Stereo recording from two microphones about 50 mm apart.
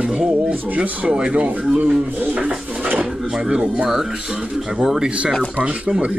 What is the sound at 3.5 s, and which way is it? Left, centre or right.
Speech, centre.